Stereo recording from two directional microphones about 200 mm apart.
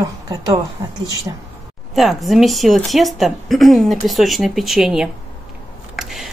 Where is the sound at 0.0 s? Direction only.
20° right (ahead or behind).